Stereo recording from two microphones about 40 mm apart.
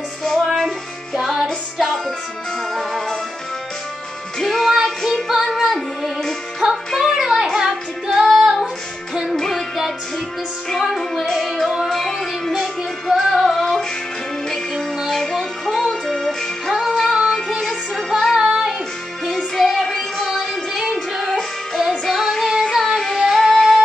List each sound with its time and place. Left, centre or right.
0.2 s music: centre
0.7 s music: centre
4.4 s music: centre
6.9 s child singing: centre
9.1 s music: centre
9.4 s music: centre
10.8 s music: centre
15.0 s music: centre
18.3 s music: centre
19.3 s music: centre